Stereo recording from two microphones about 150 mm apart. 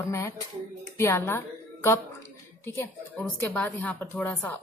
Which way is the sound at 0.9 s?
15° left (ahead or behind).